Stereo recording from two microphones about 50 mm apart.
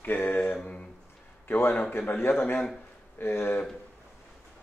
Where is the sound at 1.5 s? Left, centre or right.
Left.